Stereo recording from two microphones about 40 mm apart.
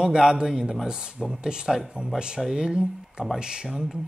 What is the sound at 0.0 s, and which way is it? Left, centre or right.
Speech, centre.